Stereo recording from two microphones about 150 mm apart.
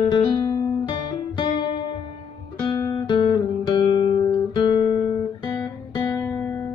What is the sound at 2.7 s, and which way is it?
Guitar, 30° left (ahead or behind).